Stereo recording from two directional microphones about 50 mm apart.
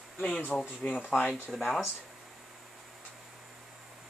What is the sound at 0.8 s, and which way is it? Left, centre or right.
Speech, left.